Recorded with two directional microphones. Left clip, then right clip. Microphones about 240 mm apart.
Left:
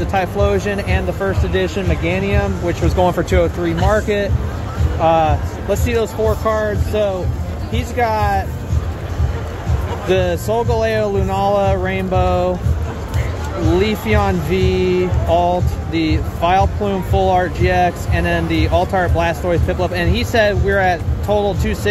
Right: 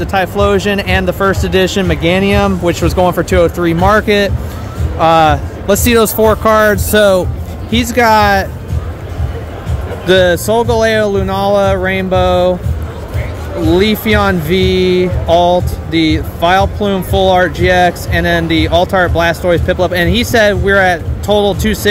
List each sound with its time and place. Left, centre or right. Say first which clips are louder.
0.0 s speech: right 5 dB; centre
3.0 s speech: right 4 dB; centre; by 8.5 s right
10.0 s speech: right 8 dB; right
13.7 s speech: right 6 dB; right